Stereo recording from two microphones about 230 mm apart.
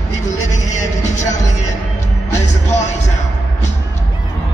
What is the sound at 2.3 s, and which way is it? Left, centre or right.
Music, left.